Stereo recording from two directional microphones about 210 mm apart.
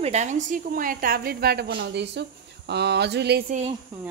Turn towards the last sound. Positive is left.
turn(degrees=-55)  # may be behind; listen again after turning